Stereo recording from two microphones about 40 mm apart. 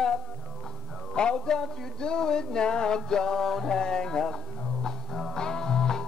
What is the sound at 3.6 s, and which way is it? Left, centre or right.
Music, centre.